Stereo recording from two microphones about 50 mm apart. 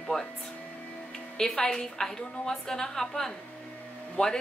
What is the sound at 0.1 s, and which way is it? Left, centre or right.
Speech, centre.